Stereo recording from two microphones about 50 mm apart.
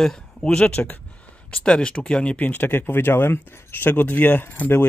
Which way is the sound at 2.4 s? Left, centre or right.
Left.